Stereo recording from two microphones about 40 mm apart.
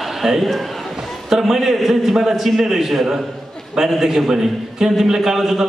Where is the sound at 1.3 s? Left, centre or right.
Centre.